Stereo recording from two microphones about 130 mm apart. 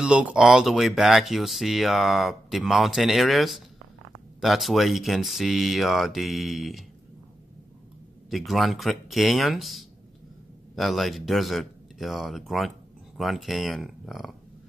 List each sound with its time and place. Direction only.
0.0 s speech: 5° right (ahead or behind)
8.3 s speech: centre (ahead or behind)